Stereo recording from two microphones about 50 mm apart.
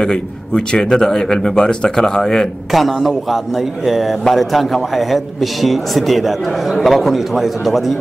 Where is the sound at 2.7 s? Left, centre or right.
Centre.